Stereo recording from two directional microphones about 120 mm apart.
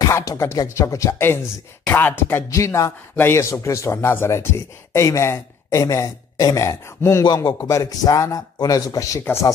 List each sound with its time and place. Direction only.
0.0 s a man's voice: 30° left (ahead or behind)